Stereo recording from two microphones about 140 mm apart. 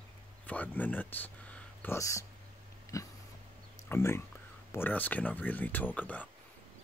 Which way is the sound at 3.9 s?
15° left (ahead or behind).